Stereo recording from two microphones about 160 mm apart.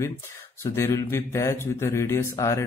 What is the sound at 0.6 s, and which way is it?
Speech, 15° left (ahead or behind).